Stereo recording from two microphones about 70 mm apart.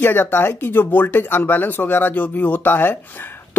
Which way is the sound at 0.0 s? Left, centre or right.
Left.